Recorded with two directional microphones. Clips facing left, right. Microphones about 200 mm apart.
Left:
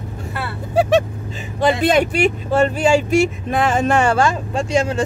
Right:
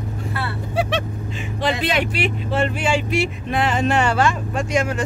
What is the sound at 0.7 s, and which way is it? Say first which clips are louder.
Vehicle: left 8 dB; 40° left (ahead or behind).